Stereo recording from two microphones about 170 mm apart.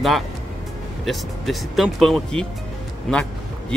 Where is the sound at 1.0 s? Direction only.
Centre (ahead or behind).